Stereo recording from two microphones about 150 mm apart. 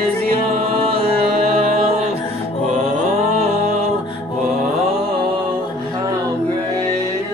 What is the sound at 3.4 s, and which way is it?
Music, 45° right (ahead or behind).